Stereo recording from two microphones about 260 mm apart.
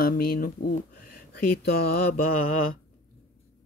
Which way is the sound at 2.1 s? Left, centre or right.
Left.